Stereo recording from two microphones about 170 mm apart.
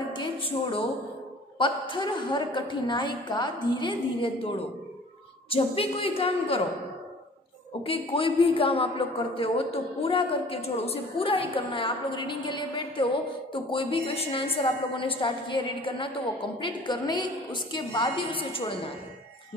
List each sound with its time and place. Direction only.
0.1 s a sound: 30° left (ahead or behind)
1.6 s a woman's voice: 30° left (ahead or behind)
7.8 s a man's voice: 35° left (ahead or behind)